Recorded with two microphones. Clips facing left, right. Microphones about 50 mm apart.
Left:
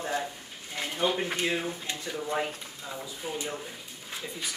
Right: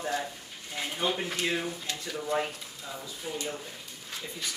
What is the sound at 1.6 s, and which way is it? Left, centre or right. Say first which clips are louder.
Speech: left 1 dB; centre.